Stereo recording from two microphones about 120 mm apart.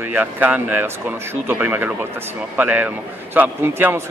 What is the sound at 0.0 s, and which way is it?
A man's voice, 15° right (ahead or behind).